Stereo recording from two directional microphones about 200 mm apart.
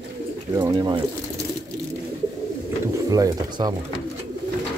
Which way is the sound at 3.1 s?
20° right (ahead or behind).